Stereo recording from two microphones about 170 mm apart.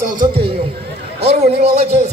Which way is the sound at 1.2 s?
35° right (ahead or behind).